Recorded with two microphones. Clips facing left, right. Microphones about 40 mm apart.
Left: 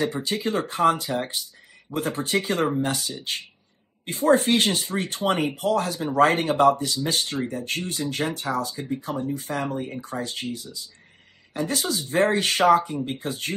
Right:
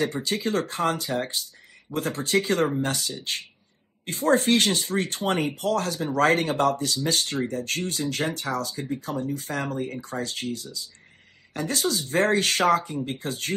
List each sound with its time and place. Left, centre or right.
0.0 s speech: left